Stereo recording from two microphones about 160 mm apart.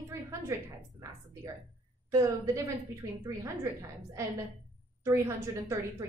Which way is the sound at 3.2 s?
20° right (ahead or behind).